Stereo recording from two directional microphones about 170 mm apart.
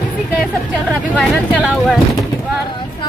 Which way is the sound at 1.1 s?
Centre (ahead or behind).